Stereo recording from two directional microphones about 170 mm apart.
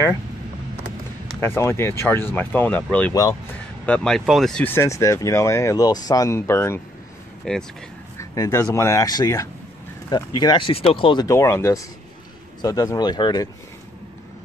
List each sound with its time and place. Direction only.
1.4 s speech: 15° left (ahead or behind)
3.1 s speech: 20° left (ahead or behind)
3.8 s speech: 5° left (ahead or behind)
7.5 s speech: 5° left (ahead or behind)
8.2 s speech: 15° left (ahead or behind)
11.2 s speech: 15° left (ahead or behind)